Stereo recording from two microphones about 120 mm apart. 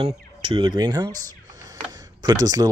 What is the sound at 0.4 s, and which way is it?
Speech, 45° right (ahead or behind).